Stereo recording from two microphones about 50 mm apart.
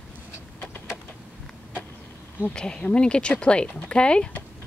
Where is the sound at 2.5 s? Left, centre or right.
Centre.